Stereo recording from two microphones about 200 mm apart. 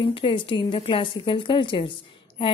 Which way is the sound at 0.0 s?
25° left (ahead or behind).